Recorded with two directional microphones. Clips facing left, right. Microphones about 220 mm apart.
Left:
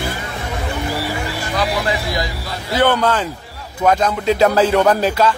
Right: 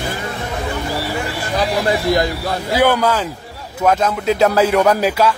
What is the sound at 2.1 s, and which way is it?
Speech, 55° right (ahead or behind).